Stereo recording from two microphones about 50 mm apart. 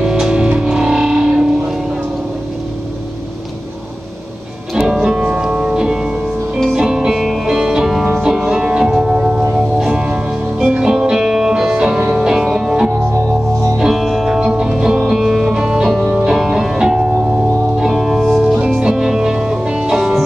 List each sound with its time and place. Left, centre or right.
0.0 s music: centre
5.0 s music: centre
7.9 s music: centre
8.2 s music: centre
9.1 s singing bowl: right
9.9 s music: centre
18.8 s music: centre